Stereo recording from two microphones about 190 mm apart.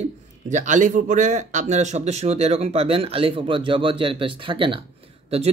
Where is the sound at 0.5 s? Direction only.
40° right (ahead or behind).